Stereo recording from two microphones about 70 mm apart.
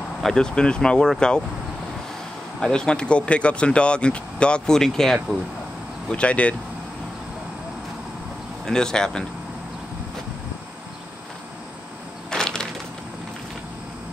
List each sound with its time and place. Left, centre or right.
0.2 s speech: centre
2.6 s speech: centre
6.0 s speech: centre
8.6 s speech: centre
12.3 s a sound: centre